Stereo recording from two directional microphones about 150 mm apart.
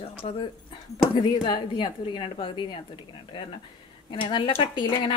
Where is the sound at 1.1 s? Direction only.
30° left (ahead or behind).